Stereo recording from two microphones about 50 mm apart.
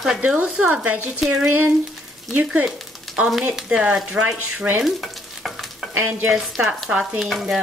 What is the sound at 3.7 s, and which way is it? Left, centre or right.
Speech, centre.